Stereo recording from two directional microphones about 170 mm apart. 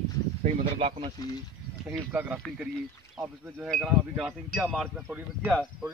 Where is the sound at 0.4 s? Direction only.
40° right (ahead or behind).